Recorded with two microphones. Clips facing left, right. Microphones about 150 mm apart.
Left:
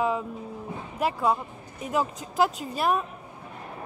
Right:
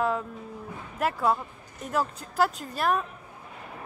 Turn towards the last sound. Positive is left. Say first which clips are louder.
# left 1 dB
turn(degrees=5)  # may be behind; listen again after turning